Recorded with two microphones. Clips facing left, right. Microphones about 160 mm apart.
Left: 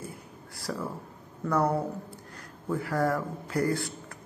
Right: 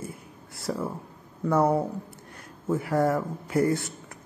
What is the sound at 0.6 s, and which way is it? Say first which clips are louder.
Speech: right 4 dB; 25° right (ahead or behind).